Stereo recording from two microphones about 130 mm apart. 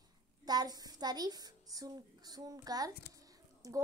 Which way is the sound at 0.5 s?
30° right (ahead or behind).